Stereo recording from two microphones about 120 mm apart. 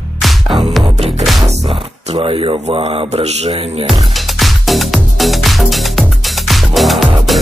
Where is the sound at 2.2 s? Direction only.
45° right (ahead or behind).